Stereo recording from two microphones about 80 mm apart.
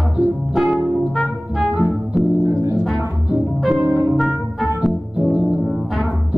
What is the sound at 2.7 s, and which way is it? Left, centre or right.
Music, centre.